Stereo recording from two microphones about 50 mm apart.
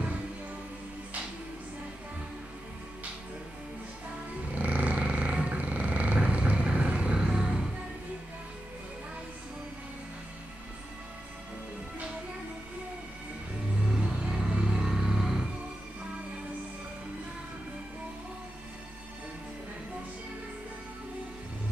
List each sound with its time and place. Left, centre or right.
4.6 s a sound: right
7.2 s music: centre
13.8 s music: centre
14.6 s vehicle: centre